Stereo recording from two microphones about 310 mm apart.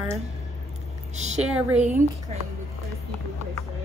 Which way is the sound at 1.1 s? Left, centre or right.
Right.